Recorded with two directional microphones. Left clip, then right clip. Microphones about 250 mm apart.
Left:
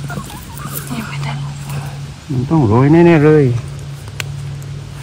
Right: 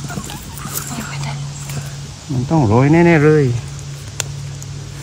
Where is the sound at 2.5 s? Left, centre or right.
Centre.